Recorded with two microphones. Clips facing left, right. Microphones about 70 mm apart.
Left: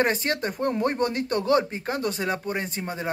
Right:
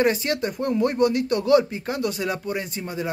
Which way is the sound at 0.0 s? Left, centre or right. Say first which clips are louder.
Right 2 dB; left.